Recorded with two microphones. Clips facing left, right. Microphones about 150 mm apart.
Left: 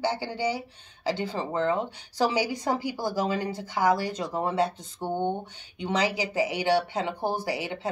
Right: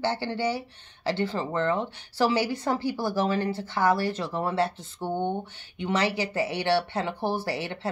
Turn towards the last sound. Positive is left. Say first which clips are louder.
# even
turn(degrees=10)  # may be behind; listen again after turning